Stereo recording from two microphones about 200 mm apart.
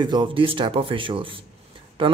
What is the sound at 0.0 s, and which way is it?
Speech, 20° right (ahead or behind).